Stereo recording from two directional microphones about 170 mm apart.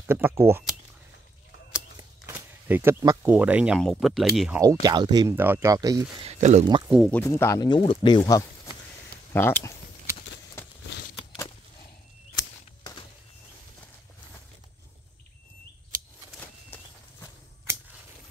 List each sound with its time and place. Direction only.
0.0 s speech: 15° right (ahead or behind)
2.0 s a sound: 15° right (ahead or behind)
3.8 s speech: centre (ahead or behind)
4.8 s speech: 25° right (ahead or behind)
5.3 s speech: 10° right (ahead or behind)
6.1 s speech: 40° right (ahead or behind)
6.6 s speech: 30° right (ahead or behind)
7.1 s speech: 10° left (ahead or behind); by 8.2 s 30° left (ahead or behind)
8.3 s a sound: 20° left (ahead or behind)
9.3 s speech: 15° left (ahead or behind)
15.9 s a sound: 55° right (ahead or behind)
16.3 s walk: 10° left (ahead or behind)